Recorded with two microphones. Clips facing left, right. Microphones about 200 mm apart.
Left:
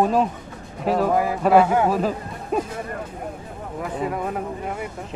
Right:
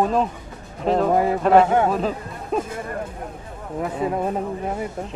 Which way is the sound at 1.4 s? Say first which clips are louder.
Even; 5° left (ahead or behind).